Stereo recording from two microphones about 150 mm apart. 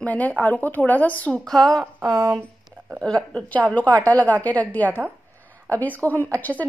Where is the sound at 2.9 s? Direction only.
5° left (ahead or behind).